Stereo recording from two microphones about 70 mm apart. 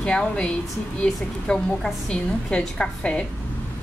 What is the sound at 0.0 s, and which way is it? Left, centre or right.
A woman's voice, centre.